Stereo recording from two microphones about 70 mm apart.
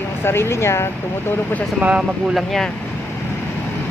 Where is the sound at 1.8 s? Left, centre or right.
Right.